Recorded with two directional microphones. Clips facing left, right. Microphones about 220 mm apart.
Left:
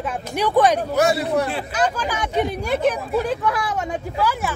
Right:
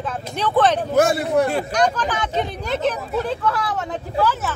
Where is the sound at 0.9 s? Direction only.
50° right (ahead or behind).